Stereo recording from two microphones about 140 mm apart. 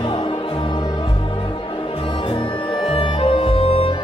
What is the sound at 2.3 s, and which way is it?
Music, 40° left (ahead or behind).